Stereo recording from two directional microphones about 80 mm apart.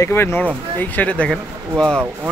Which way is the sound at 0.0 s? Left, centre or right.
Left.